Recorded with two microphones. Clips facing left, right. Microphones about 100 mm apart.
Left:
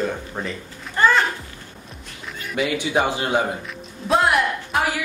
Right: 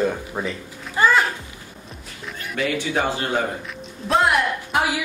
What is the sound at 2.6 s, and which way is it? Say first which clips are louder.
Speech: left 2 dB; 15° left (ahead or behind).